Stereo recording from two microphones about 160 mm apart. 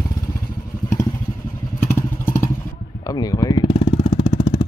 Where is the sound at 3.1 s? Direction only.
25° left (ahead or behind).